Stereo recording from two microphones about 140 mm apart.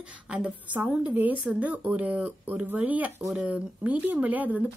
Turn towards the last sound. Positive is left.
turn(degrees=-10)  # may be behind; listen again after turning